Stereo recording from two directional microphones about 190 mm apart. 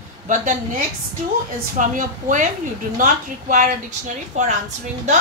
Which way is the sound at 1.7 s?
40° right (ahead or behind).